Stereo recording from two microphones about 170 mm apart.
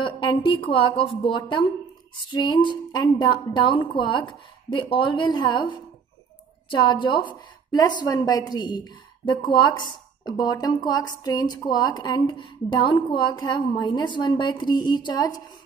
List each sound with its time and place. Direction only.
0.0 s speech: 30° left (ahead or behind)